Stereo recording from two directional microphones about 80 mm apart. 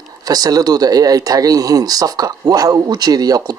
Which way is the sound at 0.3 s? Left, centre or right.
Right.